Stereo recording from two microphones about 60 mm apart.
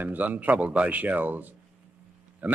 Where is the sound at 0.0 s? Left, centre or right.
Right.